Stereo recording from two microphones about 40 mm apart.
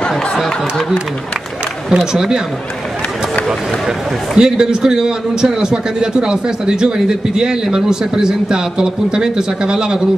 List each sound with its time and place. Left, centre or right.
0.1 s speech: centre
1.9 s a man's voice: centre
4.4 s a man's voice: centre